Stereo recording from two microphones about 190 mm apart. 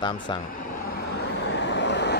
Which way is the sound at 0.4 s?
45° left (ahead or behind).